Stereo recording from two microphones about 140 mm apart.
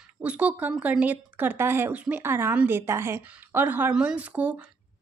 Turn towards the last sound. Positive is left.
turn(degrees=-10)  # may be behind; listen again after turning